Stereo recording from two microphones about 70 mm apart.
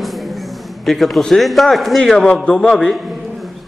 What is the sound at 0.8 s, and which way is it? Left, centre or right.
A man's voice, centre.